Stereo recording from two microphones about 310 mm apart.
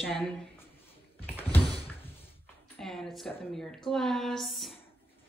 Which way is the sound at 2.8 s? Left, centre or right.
Centre.